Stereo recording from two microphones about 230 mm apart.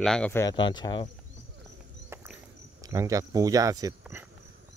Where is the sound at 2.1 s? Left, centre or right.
Centre.